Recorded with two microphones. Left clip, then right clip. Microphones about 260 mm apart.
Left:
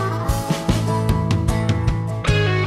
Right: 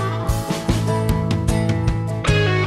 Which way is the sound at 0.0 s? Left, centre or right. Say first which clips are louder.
Left 1 dB; centre.